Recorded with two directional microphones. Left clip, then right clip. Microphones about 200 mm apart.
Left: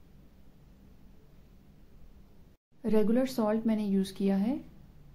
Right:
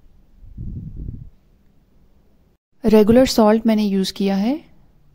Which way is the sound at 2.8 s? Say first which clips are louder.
Right 15 dB; 55° right (ahead or behind).